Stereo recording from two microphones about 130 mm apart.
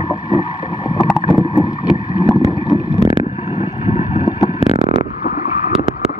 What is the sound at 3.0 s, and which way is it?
Boat, 50° left (ahead or behind).